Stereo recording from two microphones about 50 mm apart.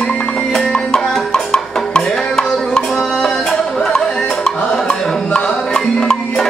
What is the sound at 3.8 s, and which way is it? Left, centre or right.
Music, centre.